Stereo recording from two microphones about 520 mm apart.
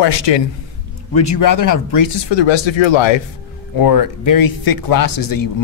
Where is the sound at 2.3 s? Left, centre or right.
Left.